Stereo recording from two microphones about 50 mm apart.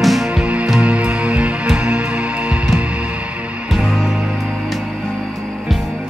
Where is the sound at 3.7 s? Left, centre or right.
Centre.